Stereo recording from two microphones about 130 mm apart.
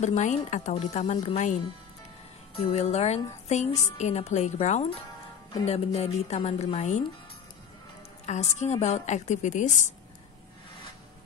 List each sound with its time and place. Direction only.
0.0 s a woman's voice: 65° left (ahead or behind)
8.3 s a woman's voice: 60° left (ahead or behind)